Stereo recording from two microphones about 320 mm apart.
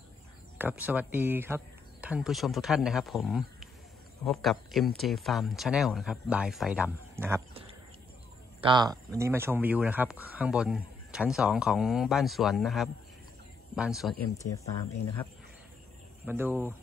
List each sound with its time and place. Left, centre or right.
0.6 s speech: centre
16.3 s speech: centre